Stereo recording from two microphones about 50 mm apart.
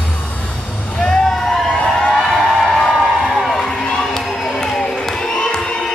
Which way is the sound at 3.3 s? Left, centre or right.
Centre.